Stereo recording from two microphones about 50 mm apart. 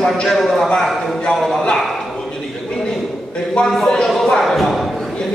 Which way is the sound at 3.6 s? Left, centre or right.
Centre.